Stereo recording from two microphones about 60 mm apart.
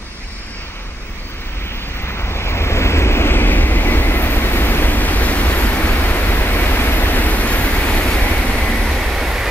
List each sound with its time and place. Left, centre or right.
2.1 s waves: left; by 8.5 s centre
8.5 s vehicle: centre